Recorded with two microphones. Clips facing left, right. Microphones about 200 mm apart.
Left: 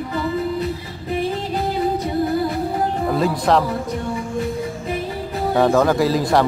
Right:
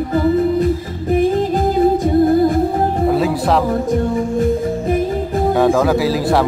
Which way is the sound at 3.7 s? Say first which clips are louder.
Right 7 dB; 45° right (ahead or behind).